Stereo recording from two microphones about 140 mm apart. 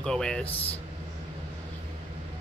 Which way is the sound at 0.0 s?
5° left (ahead or behind).